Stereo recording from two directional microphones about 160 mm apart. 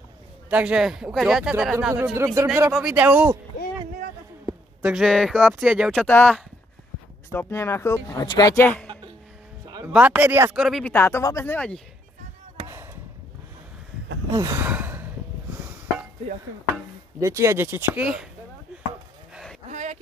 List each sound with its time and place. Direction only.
0.5 s speech: 5° right (ahead or behind)
2.7 s speech: 5° right (ahead or behind)
4.8 s speech: centre (ahead or behind)
5.9 s speech: 10° left (ahead or behind)
9.9 s speech: 10° right (ahead or behind)
10.8 s speech: 15° left (ahead or behind)
14.3 s a sound: 20° right (ahead or behind)
17.2 s speech: 20° right (ahead or behind)
19.7 s a sound: 50° right (ahead or behind)